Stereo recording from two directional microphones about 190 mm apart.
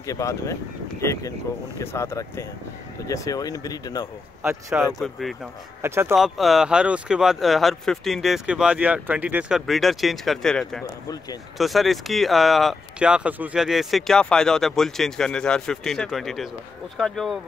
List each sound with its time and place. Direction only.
0.0 s speech: 15° left (ahead or behind)
4.4 s speech: 10° right (ahead or behind)
6.1 s speech: centre (ahead or behind)